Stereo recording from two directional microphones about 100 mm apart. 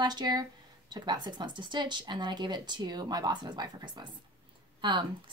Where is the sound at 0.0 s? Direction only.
45° right (ahead or behind).